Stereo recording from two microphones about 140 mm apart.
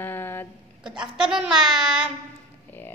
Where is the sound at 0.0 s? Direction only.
15° left (ahead or behind).